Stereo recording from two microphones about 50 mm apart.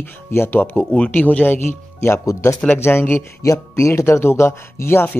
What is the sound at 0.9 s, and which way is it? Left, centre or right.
Speech, left.